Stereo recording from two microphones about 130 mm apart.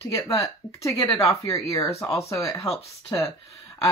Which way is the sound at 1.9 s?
20° left (ahead or behind).